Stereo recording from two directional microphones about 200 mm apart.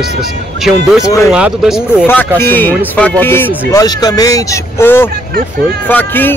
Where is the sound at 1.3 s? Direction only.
5° right (ahead or behind).